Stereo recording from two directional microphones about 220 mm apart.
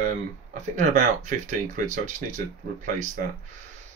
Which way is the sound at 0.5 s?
35° right (ahead or behind).